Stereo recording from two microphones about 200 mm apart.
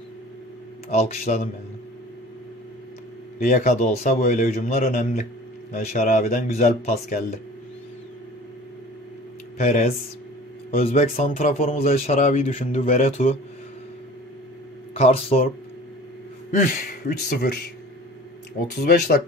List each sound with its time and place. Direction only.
0.8 s speech: 35° left (ahead or behind)
3.3 s speech: 40° left (ahead or behind)
9.6 s speech: 35° left (ahead or behind)
10.9 s speech: 35° left (ahead or behind)
15.0 s speech: 30° left (ahead or behind)
16.5 s speech: 55° left (ahead or behind)
18.8 s speech: 50° left (ahead or behind)